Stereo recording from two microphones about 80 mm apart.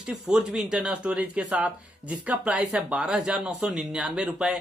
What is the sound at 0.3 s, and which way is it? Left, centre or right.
Speech, centre.